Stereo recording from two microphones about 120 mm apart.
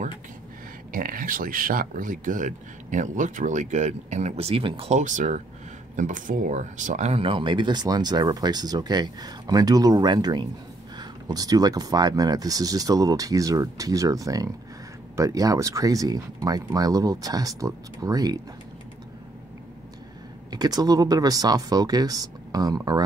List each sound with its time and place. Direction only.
2.0 s speech: 90° right; by 4.9 s 50° right (ahead or behind)
4.9 s speech: 90° right; by 18.4 s 30° right (ahead or behind)
20.5 s speech: 35° right (ahead or behind)